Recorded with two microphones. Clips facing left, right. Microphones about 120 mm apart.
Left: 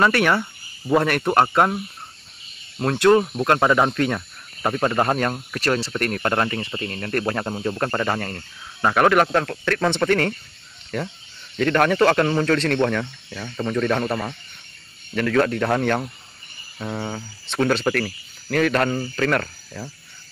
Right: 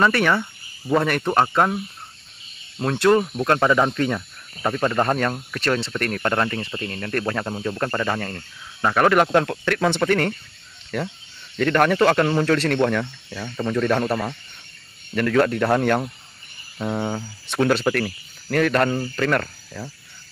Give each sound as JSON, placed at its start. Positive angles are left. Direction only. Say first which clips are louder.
{"t": 0.0, "sound": "speech", "louder": "even", "side_deg": 5}
{"t": 2.8, "sound": "speech", "louder": "left 1 dB", "side_deg": 0}
{"t": 3.9, "sound": "speech", "louder": "left 1 dB", "side_deg": 0}
{"t": 4.6, "sound": "speech", "louder": "even", "side_deg": 15}
{"t": 8.2, "sound": "speech", "louder": "even", "side_deg": 5}
{"t": 9.3, "sound": "speech", "louder": "right 2 dB", "side_deg": -15}
{"t": 11.5, "sound": "speech", "louder": "even", "side_deg": 0}
{"t": 15.3, "sound": "speech", "louder": "right 1 dB", "side_deg": -5}